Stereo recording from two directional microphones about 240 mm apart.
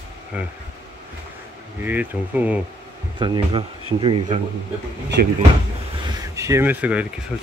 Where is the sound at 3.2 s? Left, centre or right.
Centre.